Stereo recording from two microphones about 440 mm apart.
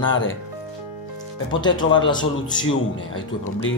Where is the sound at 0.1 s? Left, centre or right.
Left.